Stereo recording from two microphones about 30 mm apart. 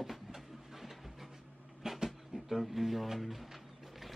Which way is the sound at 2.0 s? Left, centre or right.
Centre.